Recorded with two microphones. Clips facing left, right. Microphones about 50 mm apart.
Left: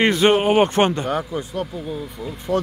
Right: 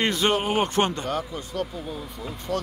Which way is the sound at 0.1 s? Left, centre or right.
Left.